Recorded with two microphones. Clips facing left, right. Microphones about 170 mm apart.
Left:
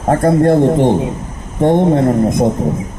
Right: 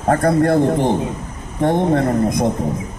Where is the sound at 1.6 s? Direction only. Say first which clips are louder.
Left 5 dB; 25° left (ahead or behind).